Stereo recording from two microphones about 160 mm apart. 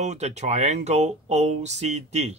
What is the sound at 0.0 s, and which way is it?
Speech, 45° right (ahead or behind).